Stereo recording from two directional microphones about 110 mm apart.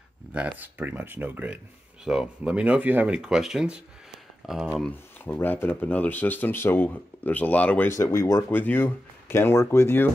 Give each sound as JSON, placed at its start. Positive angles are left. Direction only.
{"t": 0.3, "sound": "speech", "side_deg": -15}
{"t": 5.2, "sound": "speech", "side_deg": 15}
{"t": 8.0, "sound": "speech", "side_deg": 30}